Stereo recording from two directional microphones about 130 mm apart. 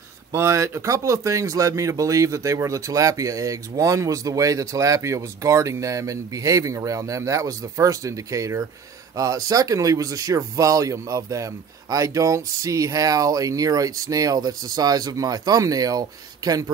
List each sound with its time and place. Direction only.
0.3 s speech: 20° right (ahead or behind)